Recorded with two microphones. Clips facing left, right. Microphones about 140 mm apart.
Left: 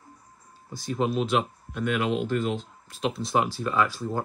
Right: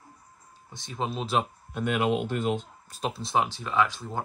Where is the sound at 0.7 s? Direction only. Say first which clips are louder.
Left 6 dB; 25° right (ahead or behind).